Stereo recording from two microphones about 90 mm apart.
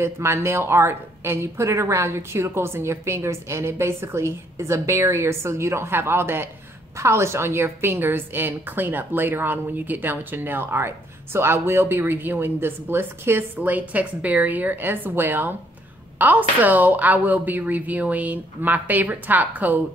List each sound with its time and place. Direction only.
0.0 s speech: 30° right (ahead or behind)